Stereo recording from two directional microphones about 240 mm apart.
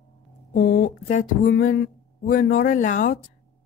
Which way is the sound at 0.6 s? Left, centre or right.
Left.